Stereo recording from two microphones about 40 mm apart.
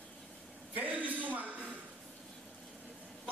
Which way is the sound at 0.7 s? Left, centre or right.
Right.